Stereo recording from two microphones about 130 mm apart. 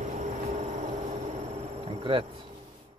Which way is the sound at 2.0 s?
45° right (ahead or behind).